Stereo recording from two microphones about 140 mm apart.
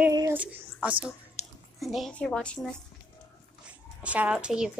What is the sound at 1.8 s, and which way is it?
Speech, centre (ahead or behind).